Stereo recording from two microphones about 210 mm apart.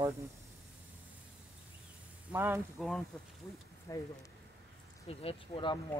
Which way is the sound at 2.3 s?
10° right (ahead or behind).